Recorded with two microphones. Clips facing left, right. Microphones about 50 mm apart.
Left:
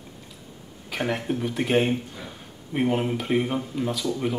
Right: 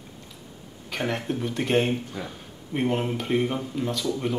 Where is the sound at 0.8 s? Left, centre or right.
Centre.